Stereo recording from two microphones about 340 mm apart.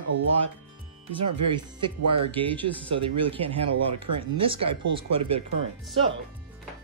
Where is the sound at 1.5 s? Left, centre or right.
Centre.